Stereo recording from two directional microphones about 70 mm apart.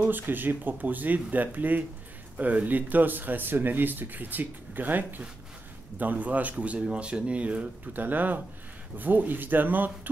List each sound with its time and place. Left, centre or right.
0.0 s speech: right